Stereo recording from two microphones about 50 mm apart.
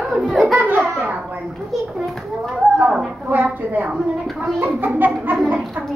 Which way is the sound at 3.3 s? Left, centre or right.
Right.